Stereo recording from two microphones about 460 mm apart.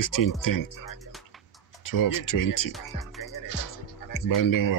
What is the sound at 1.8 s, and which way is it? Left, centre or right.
Speech, left.